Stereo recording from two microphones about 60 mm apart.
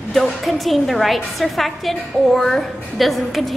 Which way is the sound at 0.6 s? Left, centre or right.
Centre.